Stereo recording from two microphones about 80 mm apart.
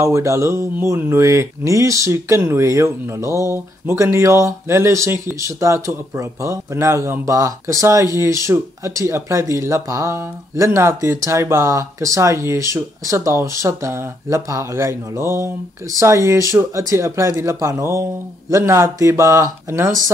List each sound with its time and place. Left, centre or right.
0.0 s speech: right